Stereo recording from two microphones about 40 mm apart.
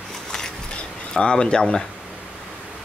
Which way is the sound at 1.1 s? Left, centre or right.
Left.